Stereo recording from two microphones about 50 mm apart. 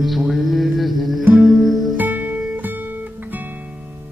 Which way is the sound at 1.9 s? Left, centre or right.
Right.